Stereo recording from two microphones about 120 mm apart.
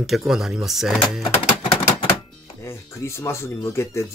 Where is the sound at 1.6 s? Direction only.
40° left (ahead or behind).